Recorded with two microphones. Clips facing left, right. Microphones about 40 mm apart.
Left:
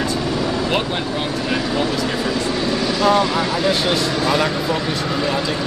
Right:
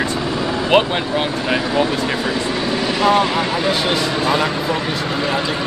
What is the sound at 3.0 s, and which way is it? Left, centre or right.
Speech, right.